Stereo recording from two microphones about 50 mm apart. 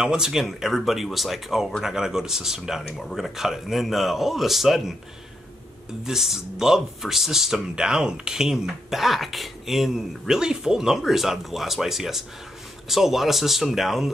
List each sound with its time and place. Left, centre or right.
0.0 s a man's voice: centre
6.0 s a man's voice: centre